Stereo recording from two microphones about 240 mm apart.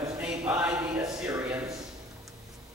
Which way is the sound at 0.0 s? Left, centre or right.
Centre.